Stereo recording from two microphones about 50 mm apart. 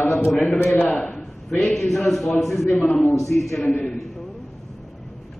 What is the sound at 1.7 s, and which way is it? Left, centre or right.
A man's voice, centre.